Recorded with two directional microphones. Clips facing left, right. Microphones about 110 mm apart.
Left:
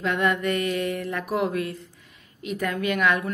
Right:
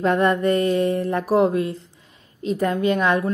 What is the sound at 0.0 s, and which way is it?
A woman's voice, 35° right (ahead or behind).